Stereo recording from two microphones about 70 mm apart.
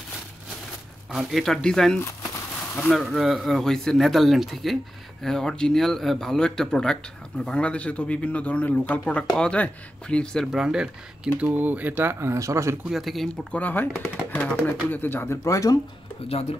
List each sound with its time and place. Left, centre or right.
1.1 s speech: centre
10.4 s speech: centre; by 12.7 s right
12.8 s speech: centre
13.5 s speech: left
15.4 s speech: left